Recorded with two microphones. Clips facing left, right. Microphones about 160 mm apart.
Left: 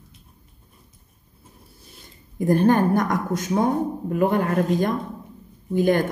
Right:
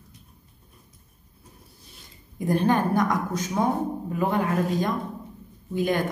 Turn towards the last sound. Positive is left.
turn(degrees=50)  # may be behind; listen again after turning